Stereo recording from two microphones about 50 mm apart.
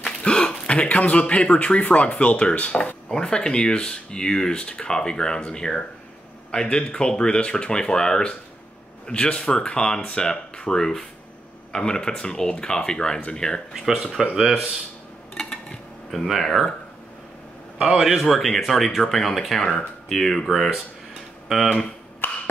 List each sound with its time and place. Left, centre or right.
0.0 s speech: centre
3.1 s speech: centre
14.2 s speech: centre
15.3 s dishes: centre
16.3 s speech: centre
17.8 s speech: centre
22.2 s a sound: left